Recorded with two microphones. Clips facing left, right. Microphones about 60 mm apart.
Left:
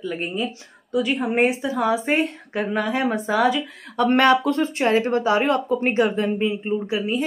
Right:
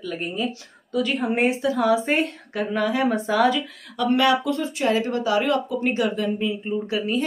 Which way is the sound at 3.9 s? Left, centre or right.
Left.